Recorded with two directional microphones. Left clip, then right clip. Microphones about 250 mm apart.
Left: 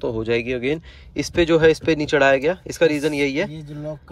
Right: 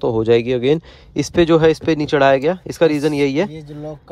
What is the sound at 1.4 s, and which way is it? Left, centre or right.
Speech, centre.